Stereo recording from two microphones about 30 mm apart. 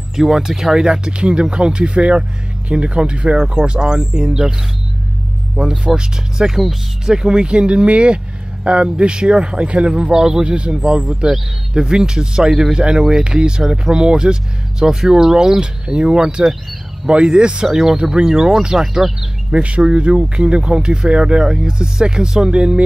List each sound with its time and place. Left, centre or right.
0.1 s speech: centre
1.0 s speech: right
5.6 s speech: right
7.4 s speech: right
12.4 s speech: centre
13.2 s speech: right
18.1 s speech: right
19.5 s speech: right